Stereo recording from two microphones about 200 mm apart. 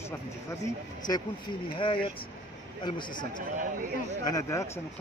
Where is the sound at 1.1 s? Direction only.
20° left (ahead or behind).